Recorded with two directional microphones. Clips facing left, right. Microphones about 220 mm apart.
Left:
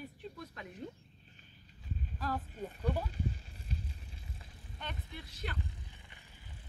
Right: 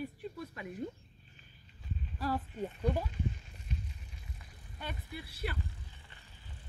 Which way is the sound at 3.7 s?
35° left (ahead or behind).